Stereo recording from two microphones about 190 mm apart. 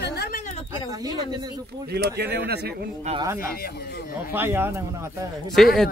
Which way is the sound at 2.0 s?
60° right (ahead or behind).